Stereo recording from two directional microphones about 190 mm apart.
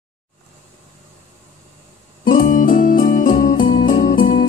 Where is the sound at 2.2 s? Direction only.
45° left (ahead or behind).